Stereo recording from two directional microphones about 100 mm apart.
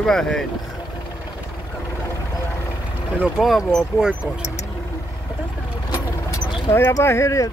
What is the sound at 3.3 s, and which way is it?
Speech, centre (ahead or behind).